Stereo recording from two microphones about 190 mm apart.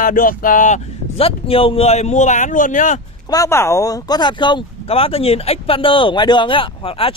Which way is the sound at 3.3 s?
15° left (ahead or behind).